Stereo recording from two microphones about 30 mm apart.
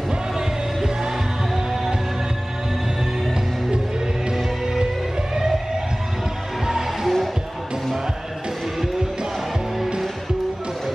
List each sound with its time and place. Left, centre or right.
6.6 s music: centre